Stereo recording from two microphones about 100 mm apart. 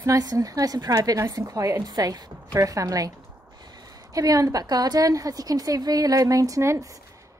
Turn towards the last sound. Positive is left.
turn(degrees=-30)  # may be behind; listen again after turning